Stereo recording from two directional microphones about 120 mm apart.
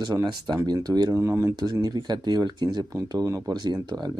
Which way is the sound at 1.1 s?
20° right (ahead or behind).